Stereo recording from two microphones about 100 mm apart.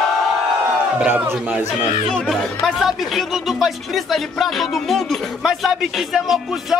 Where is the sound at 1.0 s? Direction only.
20° right (ahead or behind).